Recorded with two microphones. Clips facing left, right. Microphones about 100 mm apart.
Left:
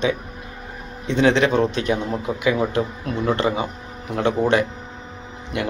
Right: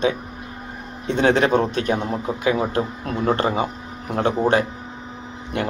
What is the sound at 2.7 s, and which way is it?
Speech, 45° right (ahead or behind).